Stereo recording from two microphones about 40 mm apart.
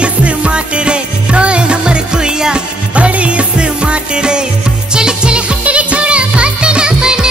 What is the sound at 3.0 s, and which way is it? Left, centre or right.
Music, right.